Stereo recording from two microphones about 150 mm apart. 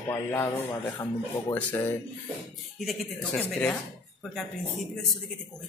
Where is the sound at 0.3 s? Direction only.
15° left (ahead or behind).